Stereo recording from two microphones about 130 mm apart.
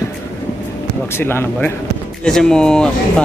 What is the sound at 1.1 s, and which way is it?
Speech, 20° left (ahead or behind).